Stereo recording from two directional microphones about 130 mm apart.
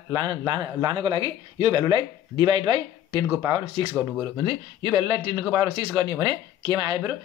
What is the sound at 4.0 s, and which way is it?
Speech, 10° right (ahead or behind).